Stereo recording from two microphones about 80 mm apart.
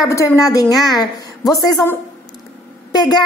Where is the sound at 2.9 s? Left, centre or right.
Left.